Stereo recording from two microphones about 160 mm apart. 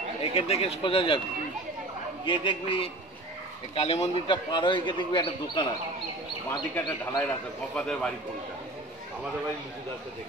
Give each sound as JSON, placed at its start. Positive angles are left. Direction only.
{"t": 0.2, "sound": "speech", "side_deg": 40}
{"t": 2.2, "sound": "speech", "side_deg": 30}
{"t": 4.5, "sound": "speech", "side_deg": 30}
{"t": 6.7, "sound": "a man's voice", "side_deg": 15}